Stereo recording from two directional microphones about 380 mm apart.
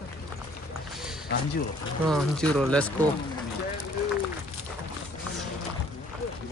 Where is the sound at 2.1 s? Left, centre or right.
Centre.